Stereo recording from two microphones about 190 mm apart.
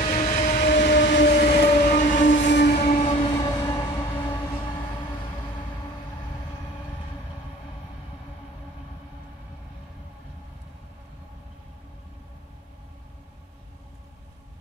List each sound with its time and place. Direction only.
0.0 s train: 35° left (ahead or behind)
0.7 s train: 60° left (ahead or behind)
1.7 s train: 45° left (ahead or behind)
2.2 s train: 70° left (ahead or behind); by 3.0 s 55° left (ahead or behind)
3.0 s train: 35° left (ahead or behind)
3.3 s train: 25° left (ahead or behind)